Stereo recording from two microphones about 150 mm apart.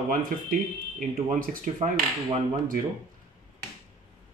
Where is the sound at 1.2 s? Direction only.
55° right (ahead or behind).